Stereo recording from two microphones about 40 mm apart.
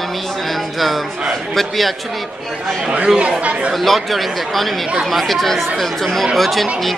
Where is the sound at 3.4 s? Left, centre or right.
Right.